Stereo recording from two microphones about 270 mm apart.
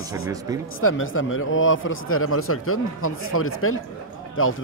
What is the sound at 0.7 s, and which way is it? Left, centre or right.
Speech, left.